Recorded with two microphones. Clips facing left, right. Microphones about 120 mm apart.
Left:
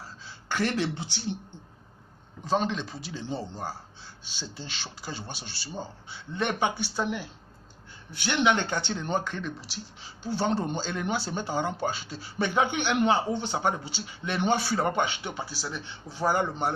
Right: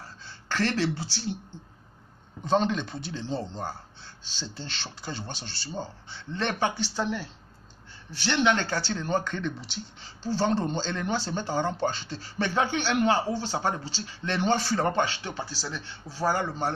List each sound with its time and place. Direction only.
0.2 s speech: 10° left (ahead or behind)
2.4 s a man's voice: centre (ahead or behind)
9.3 s speech: 5° left (ahead or behind)